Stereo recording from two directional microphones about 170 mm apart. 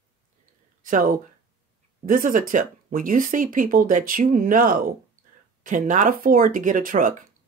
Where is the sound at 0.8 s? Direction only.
50° right (ahead or behind).